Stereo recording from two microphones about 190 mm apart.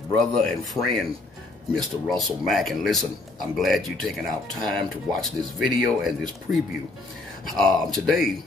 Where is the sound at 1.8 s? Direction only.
Centre (ahead or behind).